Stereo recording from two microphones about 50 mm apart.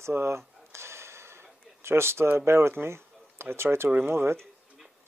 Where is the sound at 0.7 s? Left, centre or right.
Right.